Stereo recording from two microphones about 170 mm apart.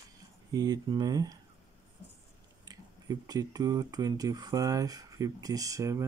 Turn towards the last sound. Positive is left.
turn(degrees=-20)  # may be behind; listen again after turning